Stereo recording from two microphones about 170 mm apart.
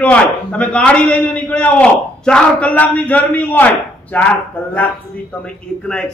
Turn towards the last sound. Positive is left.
turn(degrees=5)  # may be behind; listen again after turning